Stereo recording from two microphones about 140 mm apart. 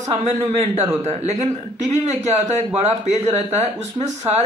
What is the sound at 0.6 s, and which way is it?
Speech, 50° right (ahead or behind).